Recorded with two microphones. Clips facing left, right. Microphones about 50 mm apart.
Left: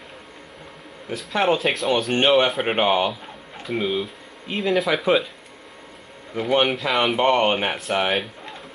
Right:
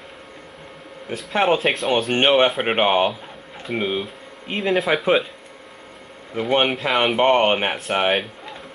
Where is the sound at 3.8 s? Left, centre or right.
Right.